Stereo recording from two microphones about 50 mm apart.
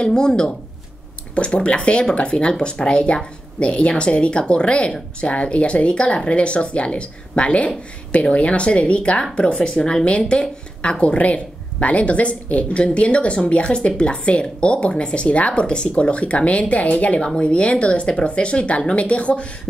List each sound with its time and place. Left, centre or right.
0.0 s speech: centre
1.3 s a woman's voice: left